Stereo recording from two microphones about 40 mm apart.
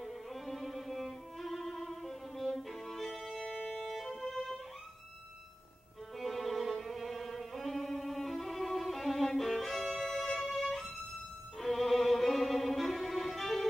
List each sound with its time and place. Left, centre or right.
0.0 s music: centre
3.6 s violin: centre
6.1 s music: centre
10.5 s violin: centre
11.5 s music: centre